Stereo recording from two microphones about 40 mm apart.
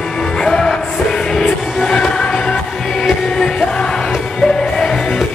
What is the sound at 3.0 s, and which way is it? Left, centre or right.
Music, centre.